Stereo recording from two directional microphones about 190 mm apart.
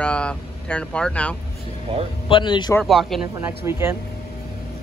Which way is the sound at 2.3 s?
25° left (ahead or behind).